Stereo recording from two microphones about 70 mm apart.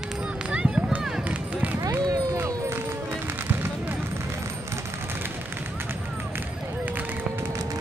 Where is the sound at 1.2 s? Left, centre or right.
Right.